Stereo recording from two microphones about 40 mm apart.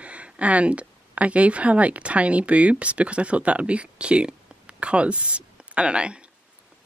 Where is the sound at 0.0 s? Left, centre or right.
Right.